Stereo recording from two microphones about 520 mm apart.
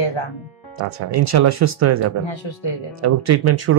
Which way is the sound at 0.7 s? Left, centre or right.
Right.